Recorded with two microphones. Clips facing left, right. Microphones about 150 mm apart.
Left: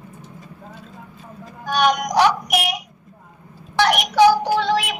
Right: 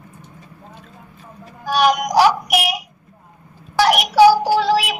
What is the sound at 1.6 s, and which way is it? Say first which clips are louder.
Child singing: right 2 dB; 5° right (ahead or behind).